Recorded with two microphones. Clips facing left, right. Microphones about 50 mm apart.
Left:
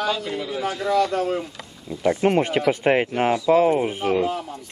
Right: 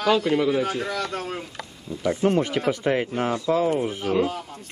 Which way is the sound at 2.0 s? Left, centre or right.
Left.